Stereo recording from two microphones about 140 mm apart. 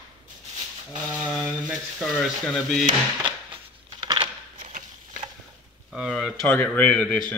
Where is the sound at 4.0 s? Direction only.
35° right (ahead or behind).